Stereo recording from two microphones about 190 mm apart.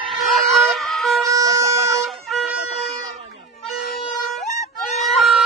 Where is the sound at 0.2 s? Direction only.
Centre (ahead or behind).